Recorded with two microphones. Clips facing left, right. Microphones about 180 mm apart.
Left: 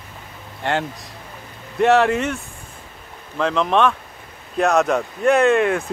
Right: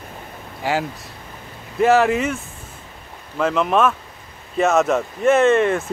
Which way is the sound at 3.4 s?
5° right (ahead or behind).